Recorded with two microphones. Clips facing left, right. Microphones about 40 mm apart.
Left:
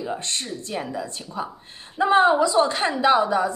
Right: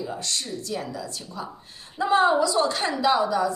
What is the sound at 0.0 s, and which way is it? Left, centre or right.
A woman's voice, left.